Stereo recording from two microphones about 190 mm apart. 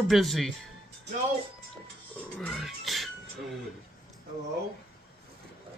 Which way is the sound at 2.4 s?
Centre (ahead or behind).